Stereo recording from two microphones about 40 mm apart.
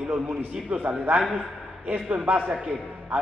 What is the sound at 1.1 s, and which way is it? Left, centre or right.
Speech, right.